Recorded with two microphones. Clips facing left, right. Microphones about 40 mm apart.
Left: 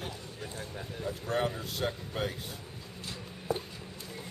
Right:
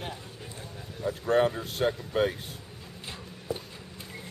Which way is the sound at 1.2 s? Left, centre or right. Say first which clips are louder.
Right 8 dB; right.